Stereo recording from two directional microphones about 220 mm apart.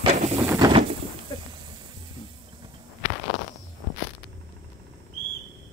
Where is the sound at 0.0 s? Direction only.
30° right (ahead or behind).